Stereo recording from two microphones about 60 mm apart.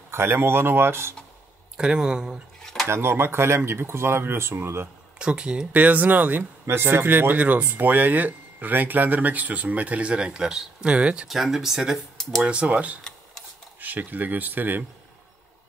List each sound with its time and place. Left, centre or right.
0.1 s speech: right
1.8 s speech: centre
2.6 s a sound: centre
2.9 s speech: right
5.2 s speech: centre
5.7 s speech: right
6.6 s speech: right; by 11.2 s centre
11.2 s speech: centre
12.4 s speech: right